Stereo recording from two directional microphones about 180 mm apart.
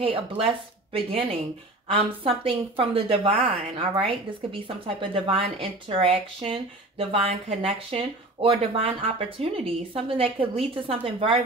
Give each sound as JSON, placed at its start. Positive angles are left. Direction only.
{"t": 0.0, "sound": "speech", "side_deg": -30}